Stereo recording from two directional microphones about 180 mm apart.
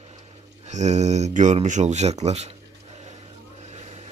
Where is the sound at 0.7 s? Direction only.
40° right (ahead or behind).